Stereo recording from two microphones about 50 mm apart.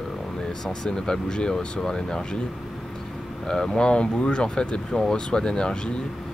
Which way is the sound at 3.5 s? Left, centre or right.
Centre.